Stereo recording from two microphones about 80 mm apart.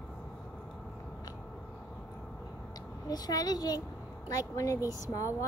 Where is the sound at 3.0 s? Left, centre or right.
Left.